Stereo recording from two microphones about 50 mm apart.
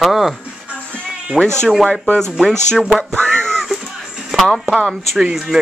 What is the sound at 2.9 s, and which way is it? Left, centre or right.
Speech, centre.